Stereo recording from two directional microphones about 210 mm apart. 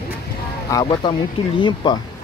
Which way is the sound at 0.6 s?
20° left (ahead or behind).